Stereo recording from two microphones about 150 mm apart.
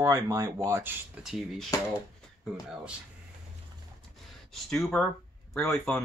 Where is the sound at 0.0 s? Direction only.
20° right (ahead or behind).